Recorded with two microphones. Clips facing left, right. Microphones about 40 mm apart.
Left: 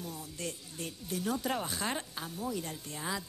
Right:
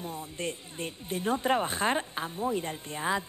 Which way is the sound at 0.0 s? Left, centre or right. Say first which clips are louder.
Right 5 dB; right.